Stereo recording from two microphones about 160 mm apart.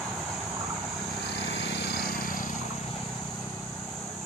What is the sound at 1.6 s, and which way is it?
Vehicle, 90° left.